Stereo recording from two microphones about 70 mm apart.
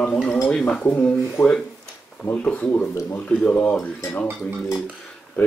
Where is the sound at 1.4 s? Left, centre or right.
Left.